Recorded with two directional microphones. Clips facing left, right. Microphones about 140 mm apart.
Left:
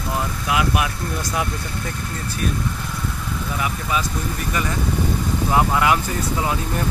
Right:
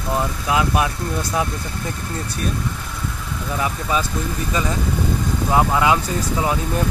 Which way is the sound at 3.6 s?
30° right (ahead or behind).